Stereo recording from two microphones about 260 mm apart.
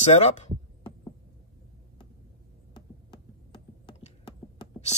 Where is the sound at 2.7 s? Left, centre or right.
Centre.